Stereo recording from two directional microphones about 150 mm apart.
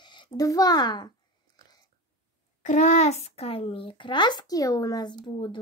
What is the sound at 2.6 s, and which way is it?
A child's voice, 55° left (ahead or behind).